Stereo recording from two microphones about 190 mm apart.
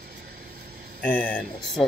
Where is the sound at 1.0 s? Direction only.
5° left (ahead or behind).